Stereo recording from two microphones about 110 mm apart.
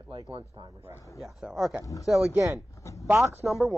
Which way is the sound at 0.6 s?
45° right (ahead or behind).